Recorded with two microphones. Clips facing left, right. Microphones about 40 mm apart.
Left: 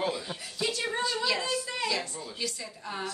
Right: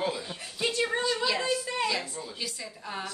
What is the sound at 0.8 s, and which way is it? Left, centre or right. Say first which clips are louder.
A woman's voice: right 1 dB; centre.